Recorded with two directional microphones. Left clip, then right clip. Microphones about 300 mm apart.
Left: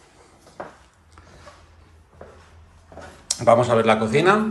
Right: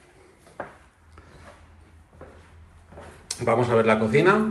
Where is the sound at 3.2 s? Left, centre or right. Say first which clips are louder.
Left 7 dB; centre.